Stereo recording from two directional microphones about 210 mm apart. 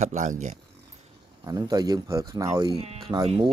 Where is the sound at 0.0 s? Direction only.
35° right (ahead or behind).